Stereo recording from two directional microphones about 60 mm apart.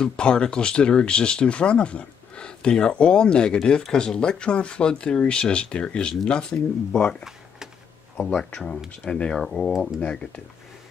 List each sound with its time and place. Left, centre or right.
0.0 s speech: centre
7.2 s a sound: centre
8.2 s speech: centre
9.9 s speech: centre